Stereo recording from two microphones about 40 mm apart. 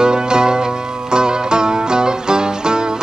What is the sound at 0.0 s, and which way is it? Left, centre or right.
Music, centre.